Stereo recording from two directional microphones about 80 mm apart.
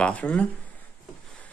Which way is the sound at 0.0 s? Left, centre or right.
Centre.